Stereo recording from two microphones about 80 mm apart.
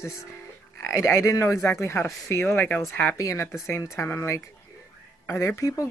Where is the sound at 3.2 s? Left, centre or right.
Left.